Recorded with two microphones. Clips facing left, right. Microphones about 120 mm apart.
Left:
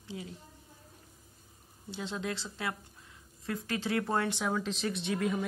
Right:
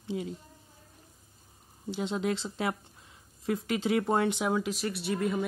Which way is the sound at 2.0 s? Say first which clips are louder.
Right 6 dB; 25° right (ahead or behind).